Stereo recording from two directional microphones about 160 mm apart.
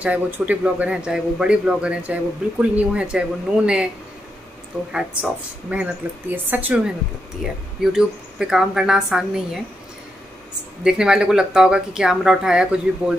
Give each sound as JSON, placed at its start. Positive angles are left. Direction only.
{"t": 0.0, "sound": "a man's voice", "side_deg": -10}
{"t": 4.9, "sound": "a man's voice", "side_deg": -5}
{"t": 10.8, "sound": "speech", "side_deg": -5}